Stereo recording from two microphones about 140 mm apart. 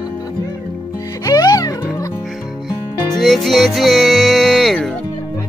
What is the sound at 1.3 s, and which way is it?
Music, 25° left (ahead or behind).